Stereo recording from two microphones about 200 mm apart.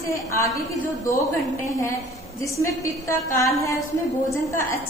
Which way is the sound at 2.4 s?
15° left (ahead or behind).